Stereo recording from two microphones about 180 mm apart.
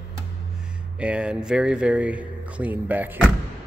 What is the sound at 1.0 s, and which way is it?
Speech, 5° right (ahead or behind).